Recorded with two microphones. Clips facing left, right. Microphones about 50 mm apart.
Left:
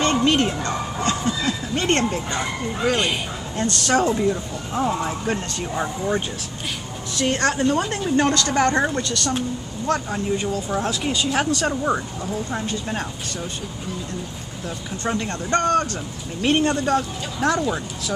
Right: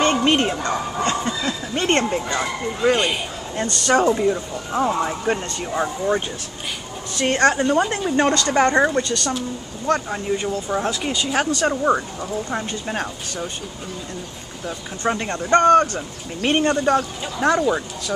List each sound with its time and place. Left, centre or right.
0.0 s speech: right
2.3 s speech: centre
2.9 s speech: centre
7.2 s speech: right
15.0 s speech: centre